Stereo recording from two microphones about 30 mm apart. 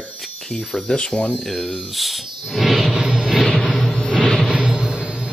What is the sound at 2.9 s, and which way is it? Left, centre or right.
Music, right.